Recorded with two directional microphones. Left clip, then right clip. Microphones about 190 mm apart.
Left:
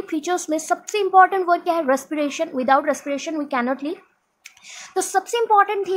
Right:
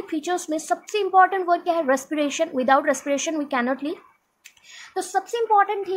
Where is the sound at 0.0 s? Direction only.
15° left (ahead or behind).